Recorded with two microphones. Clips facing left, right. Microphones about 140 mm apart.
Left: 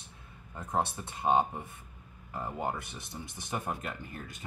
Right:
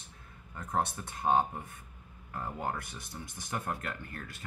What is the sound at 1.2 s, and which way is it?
Speech, 20° left (ahead or behind).